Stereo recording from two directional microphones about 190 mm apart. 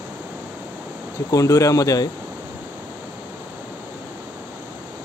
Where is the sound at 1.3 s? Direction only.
15° left (ahead or behind).